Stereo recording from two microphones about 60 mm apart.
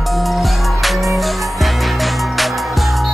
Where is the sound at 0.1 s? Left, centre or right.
Centre.